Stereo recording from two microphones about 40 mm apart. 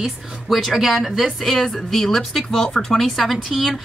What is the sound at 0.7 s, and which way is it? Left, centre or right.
A woman's voice, centre.